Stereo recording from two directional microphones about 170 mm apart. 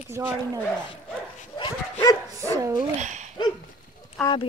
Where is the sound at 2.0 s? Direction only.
15° left (ahead or behind).